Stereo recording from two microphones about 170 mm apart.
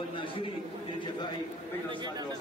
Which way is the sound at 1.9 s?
25° right (ahead or behind).